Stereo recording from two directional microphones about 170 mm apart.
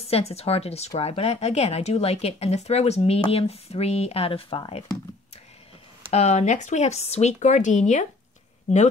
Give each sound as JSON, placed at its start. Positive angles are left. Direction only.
{"t": 0.1, "sound": "speech", "side_deg": 35}
{"t": 6.1, "sound": "speech", "side_deg": 40}